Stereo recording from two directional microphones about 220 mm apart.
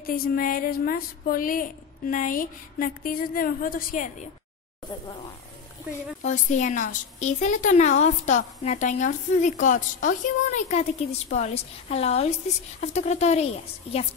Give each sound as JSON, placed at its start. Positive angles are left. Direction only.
{"t": 0.0, "sound": "a woman's voice", "side_deg": 40}
{"t": 6.2, "sound": "a woman's voice", "side_deg": 35}